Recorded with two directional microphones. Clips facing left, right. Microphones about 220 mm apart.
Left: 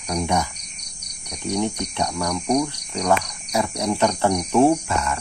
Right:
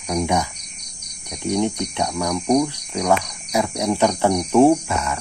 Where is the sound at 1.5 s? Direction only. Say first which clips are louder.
Right 3 dB; 15° right (ahead or behind).